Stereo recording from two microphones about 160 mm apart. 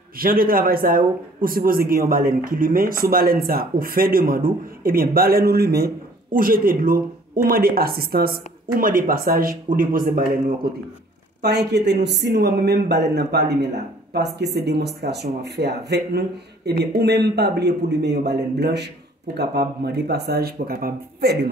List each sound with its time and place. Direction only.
0.2 s speech: 65° right (ahead or behind)
6.3 s speech: 60° right (ahead or behind)
8.7 s speech: 60° right (ahead or behind)
11.4 s speech: 90° right